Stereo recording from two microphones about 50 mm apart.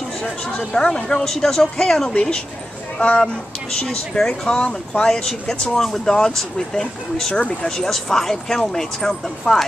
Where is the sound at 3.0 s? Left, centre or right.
Left.